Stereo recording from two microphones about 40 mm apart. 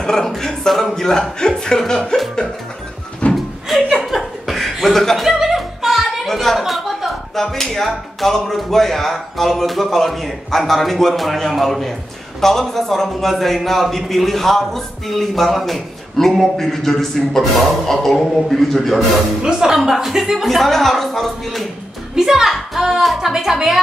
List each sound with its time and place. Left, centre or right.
0.0 s a sound: centre
0.4 s speech: centre
3.2 s door: left
3.6 s chuckle: centre
4.8 s speech: centre
5.2 s music: centre
6.6 s a sound: centre
7.5 s speech: centre
20.4 s speech: centre
22.1 s speech: centre